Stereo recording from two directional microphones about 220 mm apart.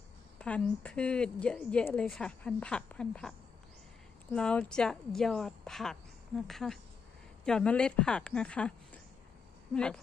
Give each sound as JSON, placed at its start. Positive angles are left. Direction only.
{"t": 0.4, "sound": "speech", "side_deg": 5}